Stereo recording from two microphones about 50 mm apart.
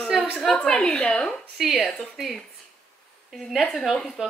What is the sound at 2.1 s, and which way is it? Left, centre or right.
Speech, centre.